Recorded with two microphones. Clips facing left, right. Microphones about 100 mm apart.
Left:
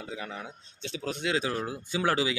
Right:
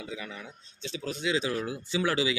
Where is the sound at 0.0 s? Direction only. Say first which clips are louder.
Left 1 dB; 50° left (ahead or behind).